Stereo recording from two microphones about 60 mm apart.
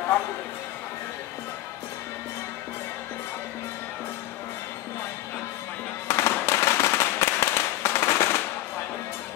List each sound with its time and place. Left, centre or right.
6.0 s firecracker: left